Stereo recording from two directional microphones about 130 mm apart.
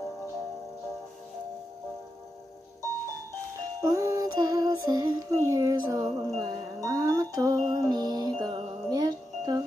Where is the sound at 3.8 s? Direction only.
25° right (ahead or behind).